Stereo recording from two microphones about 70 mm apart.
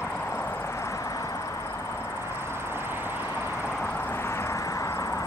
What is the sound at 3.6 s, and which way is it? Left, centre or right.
Vehicle, left.